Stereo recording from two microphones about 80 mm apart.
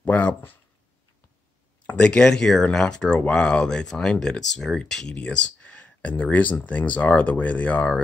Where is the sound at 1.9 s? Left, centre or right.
Centre.